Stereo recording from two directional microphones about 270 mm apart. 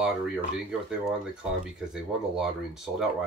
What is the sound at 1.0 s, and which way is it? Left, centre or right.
Speech, centre.